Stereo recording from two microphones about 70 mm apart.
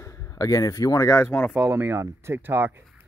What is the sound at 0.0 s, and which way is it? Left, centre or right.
A man's voice, left.